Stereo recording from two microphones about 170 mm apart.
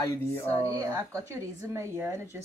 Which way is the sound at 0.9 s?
15° right (ahead or behind).